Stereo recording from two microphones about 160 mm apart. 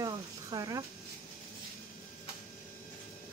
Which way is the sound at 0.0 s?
25° right (ahead or behind).